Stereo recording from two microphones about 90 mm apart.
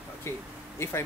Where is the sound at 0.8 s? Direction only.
30° left (ahead or behind).